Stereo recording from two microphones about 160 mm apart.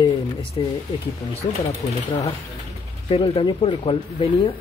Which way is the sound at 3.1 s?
35° left (ahead or behind).